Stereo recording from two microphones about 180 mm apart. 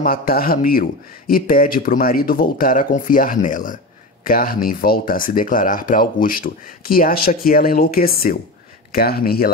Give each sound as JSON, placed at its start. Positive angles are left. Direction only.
{"t": 0.0, "sound": "speech", "side_deg": 55}